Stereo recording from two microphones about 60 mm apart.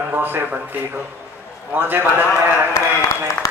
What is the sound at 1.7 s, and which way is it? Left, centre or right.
Speech, right.